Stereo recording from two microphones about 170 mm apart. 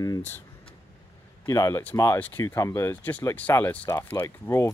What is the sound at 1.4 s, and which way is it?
Speech, 20° left (ahead or behind).